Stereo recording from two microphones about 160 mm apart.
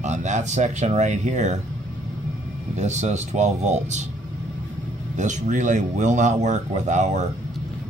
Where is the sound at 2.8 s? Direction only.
45° right (ahead or behind).